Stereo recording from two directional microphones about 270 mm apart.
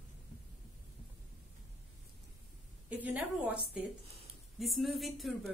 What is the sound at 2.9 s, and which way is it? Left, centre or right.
A woman's voice, centre.